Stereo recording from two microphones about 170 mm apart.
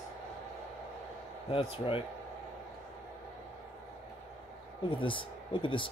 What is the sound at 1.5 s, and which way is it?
Speech, 35° left (ahead or behind).